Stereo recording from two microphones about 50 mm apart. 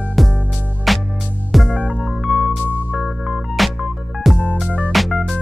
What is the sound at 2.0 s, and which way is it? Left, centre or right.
Music, centre.